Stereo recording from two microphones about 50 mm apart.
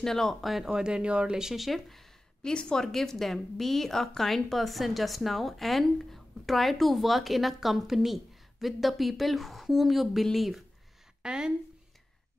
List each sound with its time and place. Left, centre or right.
0.0 s speech: centre
2.5 s speech: centre
11.2 s speech: centre